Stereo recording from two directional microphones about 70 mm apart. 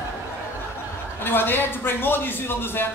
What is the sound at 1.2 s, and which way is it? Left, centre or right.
A man's voice, left.